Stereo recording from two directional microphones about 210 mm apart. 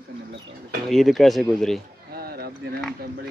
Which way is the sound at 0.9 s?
Centre (ahead or behind).